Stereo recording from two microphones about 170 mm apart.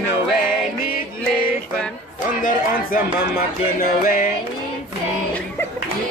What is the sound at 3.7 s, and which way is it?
Music, 55° left (ahead or behind).